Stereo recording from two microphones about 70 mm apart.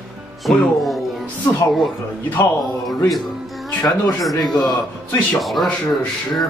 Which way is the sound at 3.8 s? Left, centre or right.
Left.